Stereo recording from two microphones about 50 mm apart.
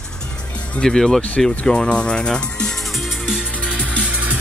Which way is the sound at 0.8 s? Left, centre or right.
Centre.